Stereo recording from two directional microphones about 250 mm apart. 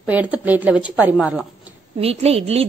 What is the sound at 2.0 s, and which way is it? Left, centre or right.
Speech, right.